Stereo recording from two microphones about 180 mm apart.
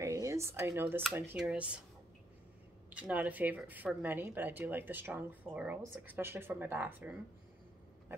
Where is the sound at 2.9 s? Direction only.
10° right (ahead or behind).